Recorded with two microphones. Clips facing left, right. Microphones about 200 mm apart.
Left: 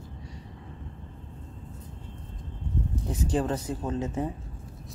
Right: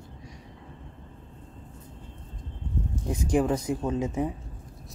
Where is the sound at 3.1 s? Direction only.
10° right (ahead or behind).